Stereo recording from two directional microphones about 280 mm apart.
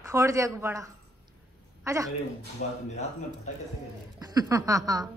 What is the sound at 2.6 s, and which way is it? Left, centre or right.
Speech, left.